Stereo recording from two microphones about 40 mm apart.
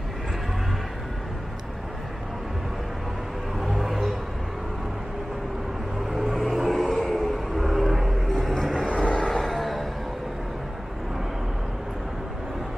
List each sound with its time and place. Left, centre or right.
3.5 s music: centre
6.0 s vehicle: centre
8.8 s vehicle: left
9.3 s music: centre